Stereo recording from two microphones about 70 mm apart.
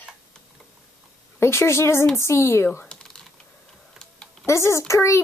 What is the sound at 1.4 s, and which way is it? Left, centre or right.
Speech, left.